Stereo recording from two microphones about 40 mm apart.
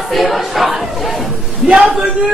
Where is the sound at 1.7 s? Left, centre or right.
Centre.